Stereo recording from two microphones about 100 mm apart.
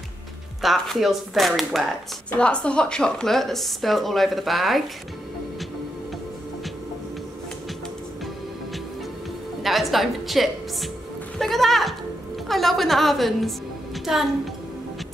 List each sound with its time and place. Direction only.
0.6 s a woman's voice: centre (ahead or behind)
2.3 s a woman's voice: 10° left (ahead or behind)
9.6 s a woman's voice: centre (ahead or behind)